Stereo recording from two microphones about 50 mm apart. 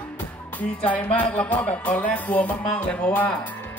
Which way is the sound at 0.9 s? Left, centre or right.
Left.